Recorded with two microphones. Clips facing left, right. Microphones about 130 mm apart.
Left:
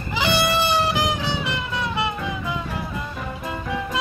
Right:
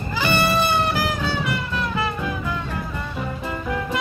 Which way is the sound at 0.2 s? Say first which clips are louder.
Right 1 dB; 10° left (ahead or behind).